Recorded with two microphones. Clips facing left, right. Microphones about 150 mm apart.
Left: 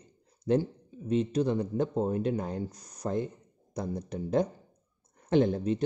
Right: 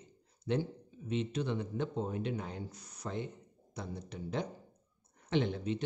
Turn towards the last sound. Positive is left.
turn(degrees=40)  # may be behind; listen again after turning